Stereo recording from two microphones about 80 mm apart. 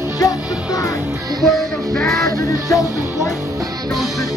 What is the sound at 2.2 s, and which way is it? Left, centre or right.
Speech, left.